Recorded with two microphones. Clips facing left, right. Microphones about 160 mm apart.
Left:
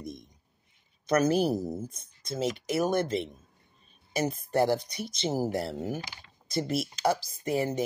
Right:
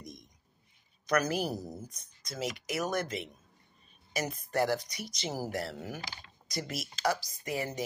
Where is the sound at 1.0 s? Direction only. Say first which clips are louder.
Left 6 dB; 25° left (ahead or behind).